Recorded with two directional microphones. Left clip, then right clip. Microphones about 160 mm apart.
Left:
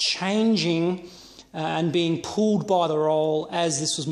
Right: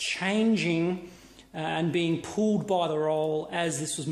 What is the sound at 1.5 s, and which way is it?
Speech, 35° left (ahead or behind).